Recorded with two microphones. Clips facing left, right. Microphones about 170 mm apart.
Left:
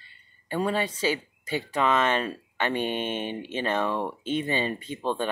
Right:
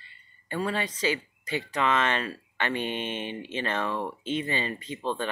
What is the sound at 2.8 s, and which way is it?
Speech, 45° left (ahead or behind).